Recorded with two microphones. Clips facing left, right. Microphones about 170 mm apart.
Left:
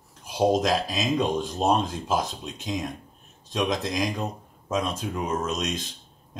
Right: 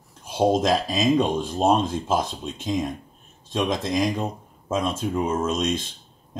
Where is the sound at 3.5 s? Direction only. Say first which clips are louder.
Right 2 dB; 30° right (ahead or behind).